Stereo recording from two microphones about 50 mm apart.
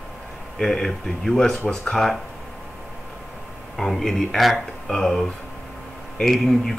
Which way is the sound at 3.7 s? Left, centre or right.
Centre.